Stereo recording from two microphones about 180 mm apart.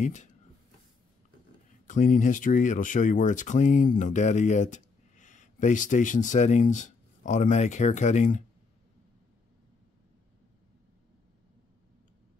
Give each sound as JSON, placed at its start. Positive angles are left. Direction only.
{"t": 0.0, "sound": "speech", "side_deg": 40}
{"t": 1.9, "sound": "speech", "side_deg": 45}